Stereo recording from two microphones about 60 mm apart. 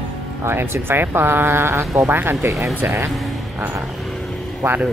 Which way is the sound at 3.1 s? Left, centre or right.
Centre.